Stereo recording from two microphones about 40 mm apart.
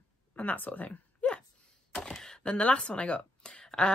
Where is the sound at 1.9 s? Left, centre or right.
Centre.